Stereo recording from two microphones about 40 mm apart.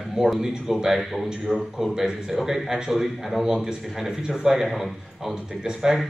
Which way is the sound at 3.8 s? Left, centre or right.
Centre.